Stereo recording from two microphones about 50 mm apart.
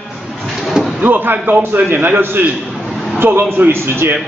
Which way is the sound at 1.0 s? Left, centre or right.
Right.